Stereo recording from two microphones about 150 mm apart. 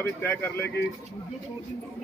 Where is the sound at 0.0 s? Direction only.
15° left (ahead or behind).